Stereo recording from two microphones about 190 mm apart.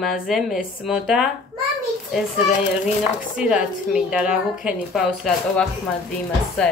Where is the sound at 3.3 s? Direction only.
5° right (ahead or behind).